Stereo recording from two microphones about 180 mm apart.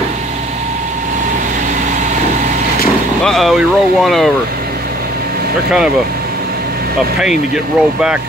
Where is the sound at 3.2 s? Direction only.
Centre (ahead or behind).